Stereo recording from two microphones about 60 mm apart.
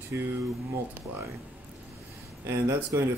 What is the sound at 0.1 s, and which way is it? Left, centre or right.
Speech, right.